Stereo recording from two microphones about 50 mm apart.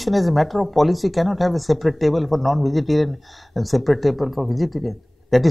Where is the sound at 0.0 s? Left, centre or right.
Centre.